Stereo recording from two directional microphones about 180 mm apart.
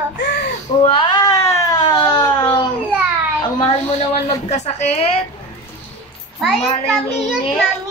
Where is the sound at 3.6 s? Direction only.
30° left (ahead or behind).